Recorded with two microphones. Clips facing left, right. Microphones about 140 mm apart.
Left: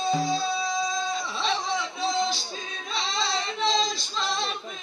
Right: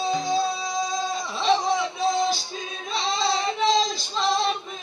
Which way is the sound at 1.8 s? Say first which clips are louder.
Right 4 dB; centre (ahead or behind).